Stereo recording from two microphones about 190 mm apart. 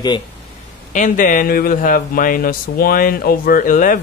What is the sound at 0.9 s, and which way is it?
A man's voice, 45° left (ahead or behind).